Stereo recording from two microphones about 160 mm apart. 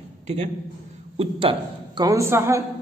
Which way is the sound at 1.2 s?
35° right (ahead or behind).